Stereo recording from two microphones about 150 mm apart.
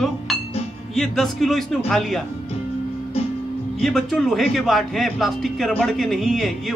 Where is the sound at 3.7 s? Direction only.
Centre (ahead or behind).